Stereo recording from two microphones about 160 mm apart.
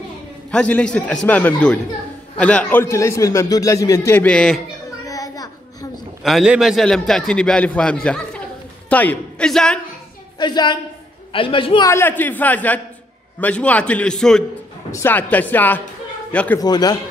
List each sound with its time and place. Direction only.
0.5 s a man's voice: 10° left (ahead or behind)
5.0 s a sound: 20° left (ahead or behind)
6.2 s a man's voice: 5° right (ahead or behind)
10.4 s a man's voice: 30° left (ahead or behind)
11.9 s a man's voice: 15° left (ahead or behind)
14.9 s a man's voice: 15° left (ahead or behind)
16.5 s a man's voice: 25° left (ahead or behind)